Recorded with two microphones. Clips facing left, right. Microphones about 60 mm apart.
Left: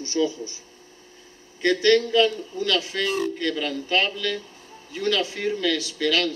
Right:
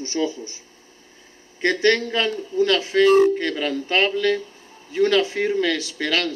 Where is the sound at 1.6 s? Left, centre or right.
Right.